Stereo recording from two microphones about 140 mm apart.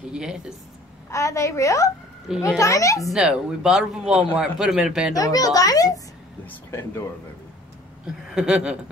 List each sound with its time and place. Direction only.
0.1 s speech: 5° right (ahead or behind)
1.1 s a child's voice: 20° left (ahead or behind)
2.3 s speech: 5° right (ahead or behind)
2.6 s a child's voice: 25° left (ahead or behind)
3.1 s speech: 5° right (ahead or behind)
5.1 s a child's voice: 25° left (ahead or behind)
8.3 s speech: 5° right (ahead or behind)